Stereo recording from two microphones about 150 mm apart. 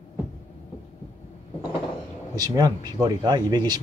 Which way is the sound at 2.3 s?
25° right (ahead or behind).